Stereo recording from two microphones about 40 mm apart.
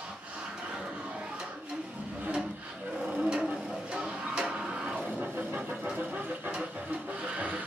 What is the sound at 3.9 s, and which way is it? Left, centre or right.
Music, right.